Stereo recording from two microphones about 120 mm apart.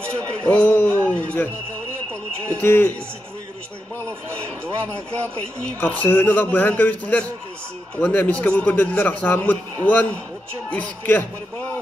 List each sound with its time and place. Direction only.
0.4 s a man's voice: 10° left (ahead or behind)
1.0 s a sound: 10° left (ahead or behind)
2.5 s a man's voice: 15° left (ahead or behind)
5.8 s a man's voice: 15° left (ahead or behind)